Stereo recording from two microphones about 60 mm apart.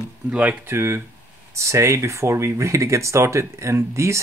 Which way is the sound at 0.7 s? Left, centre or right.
Right.